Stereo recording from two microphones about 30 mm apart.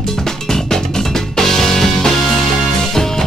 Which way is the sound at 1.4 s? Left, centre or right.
Centre.